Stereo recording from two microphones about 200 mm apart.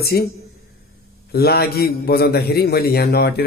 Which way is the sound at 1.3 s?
50° left (ahead or behind).